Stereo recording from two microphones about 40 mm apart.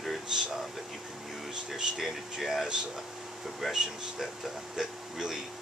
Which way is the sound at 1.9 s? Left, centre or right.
Centre.